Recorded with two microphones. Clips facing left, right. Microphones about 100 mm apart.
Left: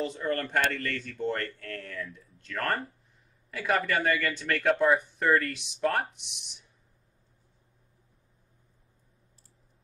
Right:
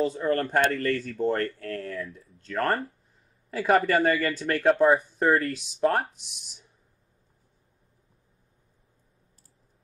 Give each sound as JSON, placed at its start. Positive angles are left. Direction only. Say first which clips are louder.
{"t": 0.0, "sound": "speech", "louder": "right 5 dB", "side_deg": -35}